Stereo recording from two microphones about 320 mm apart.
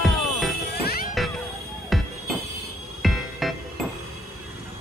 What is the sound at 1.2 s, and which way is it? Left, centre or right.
Music, centre.